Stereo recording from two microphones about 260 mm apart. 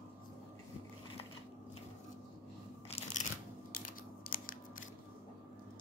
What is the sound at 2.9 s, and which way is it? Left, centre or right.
Crunch, left.